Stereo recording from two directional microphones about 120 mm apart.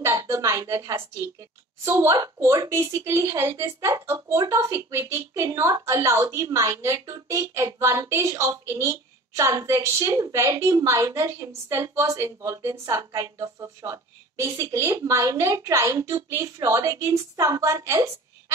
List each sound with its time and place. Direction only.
0.0 s a woman's voice: 20° right (ahead or behind)